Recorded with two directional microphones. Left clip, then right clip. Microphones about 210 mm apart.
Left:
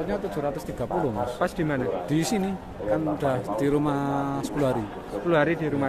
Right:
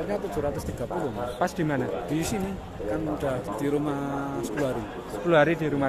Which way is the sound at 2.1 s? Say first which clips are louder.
Left 3 dB; 45° left (ahead or behind).